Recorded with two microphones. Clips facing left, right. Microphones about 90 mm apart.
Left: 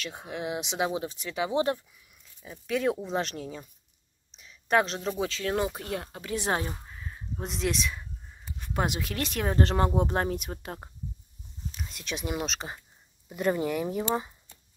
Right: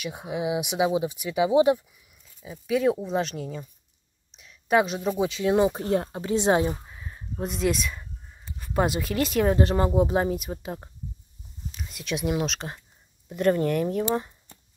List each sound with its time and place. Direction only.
0.0 s speech: 10° right (ahead or behind)
6.7 s speech: 5° right (ahead or behind)
11.8 s speech: centre (ahead or behind)